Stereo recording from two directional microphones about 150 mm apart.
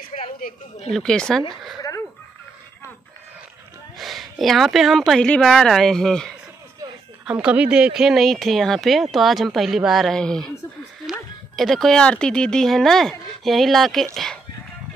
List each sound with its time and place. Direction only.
0.1 s a sound: 50° left (ahead or behind)
0.8 s speech: 5° left (ahead or behind)
1.8 s fowl: 20° left (ahead or behind)
4.0 s speech: centre (ahead or behind)
7.2 s speech: 10° right (ahead or behind)